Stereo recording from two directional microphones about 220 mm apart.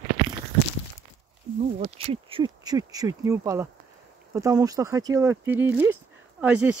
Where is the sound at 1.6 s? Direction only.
30° right (ahead or behind).